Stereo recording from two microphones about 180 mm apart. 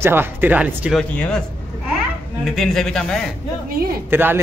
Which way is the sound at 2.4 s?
Centre (ahead or behind).